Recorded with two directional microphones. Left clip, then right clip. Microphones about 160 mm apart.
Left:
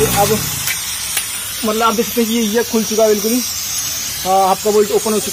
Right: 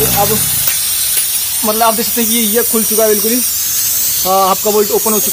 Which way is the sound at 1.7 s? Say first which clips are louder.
Right 2 dB; 5° right (ahead or behind).